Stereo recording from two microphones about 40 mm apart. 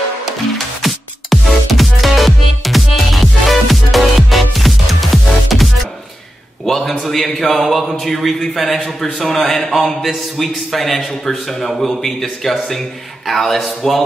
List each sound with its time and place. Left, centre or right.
0.8 s music: centre
6.6 s a sound: centre
7.9 s speech: centre
8.2 s a man's voice: centre
8.7 s a man's voice: centre